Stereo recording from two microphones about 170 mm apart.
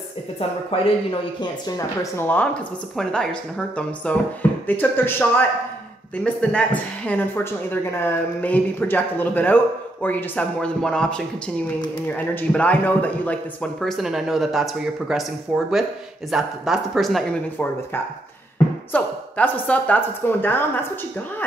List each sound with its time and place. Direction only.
0.7 s a man's voice: 35° left (ahead or behind)
1.4 s speech: 15° left (ahead or behind)
6.2 s speech: 10° left (ahead or behind)
12.4 s speech: 10° left (ahead or behind)